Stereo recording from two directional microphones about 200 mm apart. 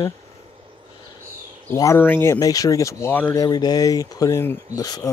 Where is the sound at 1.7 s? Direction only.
15° left (ahead or behind).